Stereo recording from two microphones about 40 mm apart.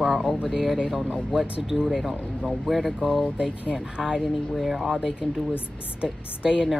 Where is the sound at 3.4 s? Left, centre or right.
Centre.